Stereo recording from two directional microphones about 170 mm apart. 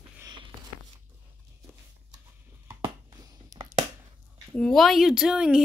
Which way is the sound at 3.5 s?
20° right (ahead or behind).